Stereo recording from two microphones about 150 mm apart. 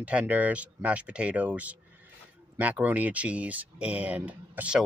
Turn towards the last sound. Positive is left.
turn(degrees=-10)  # may be behind; listen again after turning